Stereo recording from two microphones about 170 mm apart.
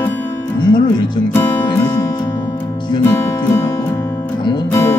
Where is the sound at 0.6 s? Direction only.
25° left (ahead or behind).